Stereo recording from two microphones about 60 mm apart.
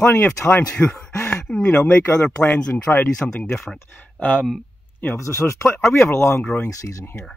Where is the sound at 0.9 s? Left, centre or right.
Left.